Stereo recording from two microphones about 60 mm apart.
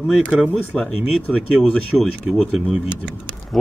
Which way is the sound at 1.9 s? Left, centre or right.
Centre.